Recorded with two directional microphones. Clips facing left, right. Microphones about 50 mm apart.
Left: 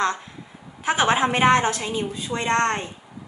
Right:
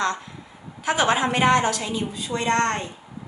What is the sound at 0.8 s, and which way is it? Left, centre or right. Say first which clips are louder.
A woman's voice: left 1 dB; left.